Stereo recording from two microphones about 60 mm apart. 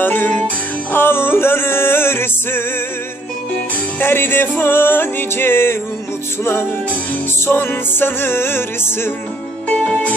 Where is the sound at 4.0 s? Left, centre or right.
Left.